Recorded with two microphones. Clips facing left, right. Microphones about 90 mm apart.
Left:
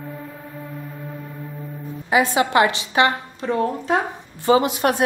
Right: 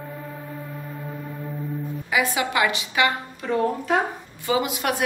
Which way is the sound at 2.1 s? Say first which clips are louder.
Left 6 dB; 35° left (ahead or behind).